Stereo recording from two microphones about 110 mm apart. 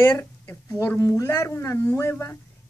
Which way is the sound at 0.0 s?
20° left (ahead or behind).